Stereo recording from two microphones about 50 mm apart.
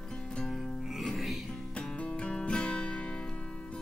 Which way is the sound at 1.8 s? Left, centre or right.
Left.